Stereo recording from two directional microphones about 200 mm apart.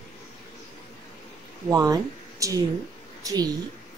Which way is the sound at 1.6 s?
15° right (ahead or behind).